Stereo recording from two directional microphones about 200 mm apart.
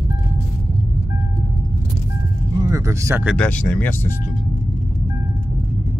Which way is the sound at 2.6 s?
15° right (ahead or behind).